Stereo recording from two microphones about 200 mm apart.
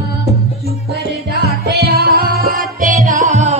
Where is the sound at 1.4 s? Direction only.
50° right (ahead or behind).